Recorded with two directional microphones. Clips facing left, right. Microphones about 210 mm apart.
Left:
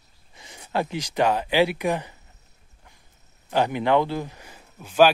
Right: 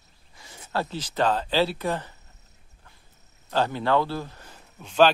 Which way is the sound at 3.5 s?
15° left (ahead or behind).